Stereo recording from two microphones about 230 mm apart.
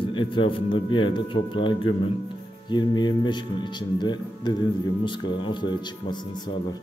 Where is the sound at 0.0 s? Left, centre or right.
Left.